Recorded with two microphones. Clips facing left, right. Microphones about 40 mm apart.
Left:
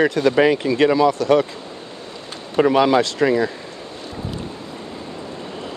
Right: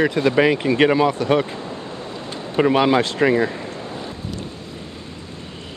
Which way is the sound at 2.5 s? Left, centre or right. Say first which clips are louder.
Left 1 dB; centre.